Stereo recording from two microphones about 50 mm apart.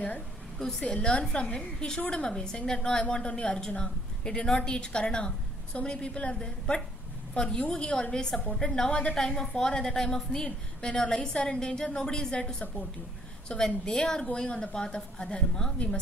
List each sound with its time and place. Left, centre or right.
0.6 s a woman's voice: centre
0.8 s a woman's voice: left